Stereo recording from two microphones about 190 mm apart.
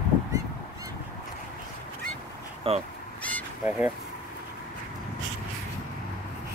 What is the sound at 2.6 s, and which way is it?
Speech, 30° right (ahead or behind).